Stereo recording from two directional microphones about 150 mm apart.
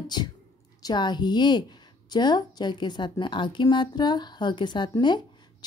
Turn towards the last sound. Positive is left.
turn(degrees=30)  # may be behind; listen again after turning